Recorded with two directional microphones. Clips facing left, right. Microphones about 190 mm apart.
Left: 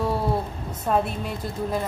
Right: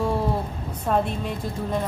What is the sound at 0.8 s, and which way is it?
Speech, 5° left (ahead or behind).